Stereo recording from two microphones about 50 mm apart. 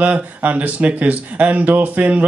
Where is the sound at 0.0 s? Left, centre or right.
Right.